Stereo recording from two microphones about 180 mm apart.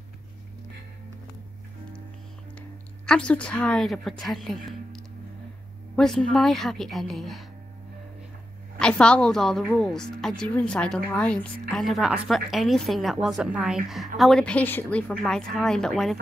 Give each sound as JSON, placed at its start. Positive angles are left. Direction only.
{"t": 3.1, "sound": "a woman's voice", "side_deg": 5}
{"t": 8.7, "sound": "a woman's voice", "side_deg": 5}